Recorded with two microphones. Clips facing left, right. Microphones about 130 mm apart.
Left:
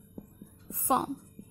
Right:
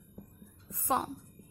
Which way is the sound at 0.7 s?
20° left (ahead or behind).